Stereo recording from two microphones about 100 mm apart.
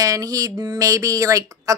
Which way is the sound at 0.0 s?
35° right (ahead or behind).